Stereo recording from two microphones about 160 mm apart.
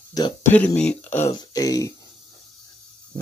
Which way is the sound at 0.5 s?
10° left (ahead or behind).